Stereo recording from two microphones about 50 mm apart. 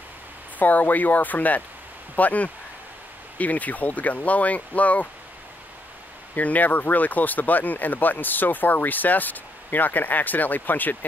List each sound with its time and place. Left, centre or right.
0.6 s speech: left
6.3 s speech: left